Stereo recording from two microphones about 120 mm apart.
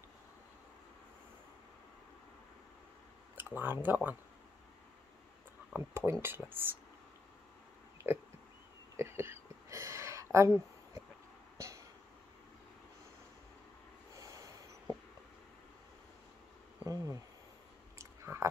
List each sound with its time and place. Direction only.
3.3 s speech: 15° right (ahead or behind)
5.7 s speech: 20° right (ahead or behind)
8.0 s speech: 20° right (ahead or behind)
8.9 s a sound: 20° right (ahead or behind)
10.3 s speech: 25° right (ahead or behind)
11.5 s a sound: 25° right (ahead or behind)
14.1 s snort: 25° right (ahead or behind)
16.8 s a sound: 30° right (ahead or behind)
17.9 s chewing: 25° right (ahead or behind)